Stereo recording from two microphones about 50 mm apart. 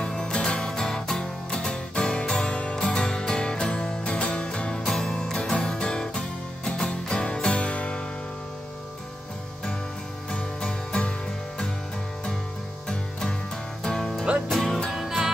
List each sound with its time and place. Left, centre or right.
0.0 s music: centre
10.3 s music: centre
13.8 s music: centre
14.9 s music: centre